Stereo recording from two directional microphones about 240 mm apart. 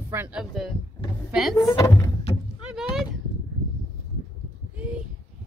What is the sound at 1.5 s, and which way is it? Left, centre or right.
Speech, centre.